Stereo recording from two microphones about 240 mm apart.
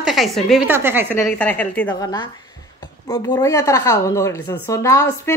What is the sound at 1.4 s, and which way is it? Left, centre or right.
Speech, centre.